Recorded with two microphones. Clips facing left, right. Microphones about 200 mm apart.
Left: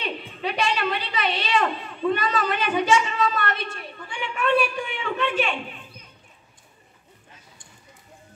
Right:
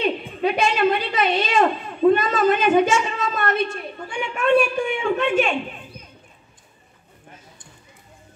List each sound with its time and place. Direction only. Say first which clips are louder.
0.0 s a woman's voice: right 8 dB; 50° right (ahead or behind)